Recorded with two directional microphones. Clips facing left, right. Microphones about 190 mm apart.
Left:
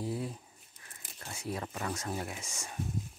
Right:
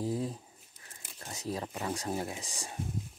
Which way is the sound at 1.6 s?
20° right (ahead or behind).